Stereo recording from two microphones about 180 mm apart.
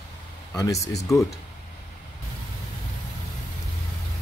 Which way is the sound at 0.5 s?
15° left (ahead or behind).